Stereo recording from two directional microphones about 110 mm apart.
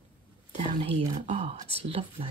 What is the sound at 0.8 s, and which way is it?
Speech, 90° right.